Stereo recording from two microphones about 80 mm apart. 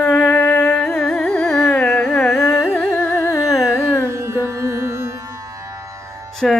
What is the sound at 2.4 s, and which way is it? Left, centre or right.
Carnatic music, left.